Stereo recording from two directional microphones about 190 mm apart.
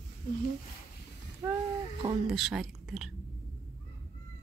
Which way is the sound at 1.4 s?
15° right (ahead or behind).